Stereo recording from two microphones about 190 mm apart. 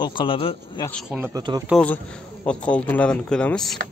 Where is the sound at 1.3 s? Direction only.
20° right (ahead or behind).